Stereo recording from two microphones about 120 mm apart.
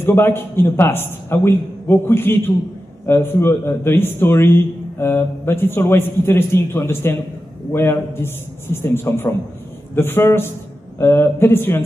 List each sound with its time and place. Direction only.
0.0 s a man's voice: 20° left (ahead or behind)